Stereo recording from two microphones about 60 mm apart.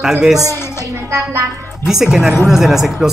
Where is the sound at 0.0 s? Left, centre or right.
Centre.